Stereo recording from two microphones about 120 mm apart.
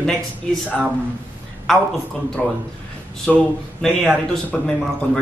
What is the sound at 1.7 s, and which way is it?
A man's voice, 5° left (ahead or behind).